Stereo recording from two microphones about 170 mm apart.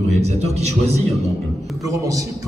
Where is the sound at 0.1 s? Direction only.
40° right (ahead or behind).